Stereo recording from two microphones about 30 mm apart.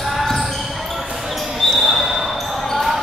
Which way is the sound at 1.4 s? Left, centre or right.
Centre.